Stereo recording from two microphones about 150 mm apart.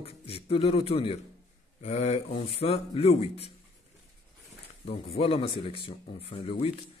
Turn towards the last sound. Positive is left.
turn(degrees=40)  # may be behind; listen again after turning